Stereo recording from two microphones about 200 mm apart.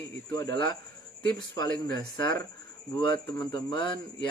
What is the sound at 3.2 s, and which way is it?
Speech, 20° left (ahead or behind).